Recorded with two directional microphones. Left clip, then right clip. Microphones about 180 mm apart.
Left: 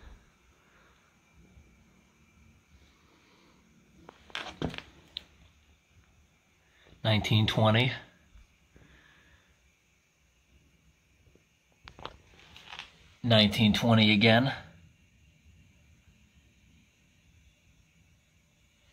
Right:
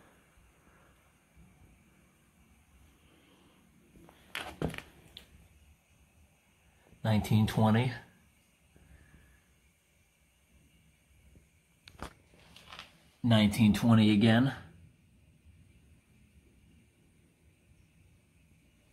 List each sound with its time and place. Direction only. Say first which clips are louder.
4.4 s a sound: left 1 dB; 5° right (ahead or behind)
7.0 s speech: left 4 dB; 10° left (ahead or behind)
13.2 s speech: left 4 dB; 10° left (ahead or behind)